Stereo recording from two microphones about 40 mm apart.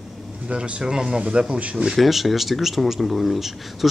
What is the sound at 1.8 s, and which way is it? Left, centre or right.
Speech, centre.